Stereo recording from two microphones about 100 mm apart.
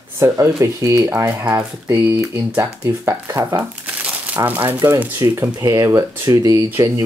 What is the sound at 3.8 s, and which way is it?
Speech, 15° right (ahead or behind).